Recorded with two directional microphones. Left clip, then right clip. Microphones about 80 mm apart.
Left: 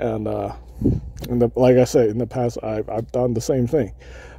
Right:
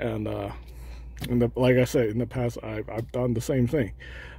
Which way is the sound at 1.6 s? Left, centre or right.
Left.